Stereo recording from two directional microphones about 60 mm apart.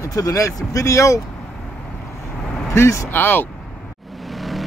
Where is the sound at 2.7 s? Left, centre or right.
Left.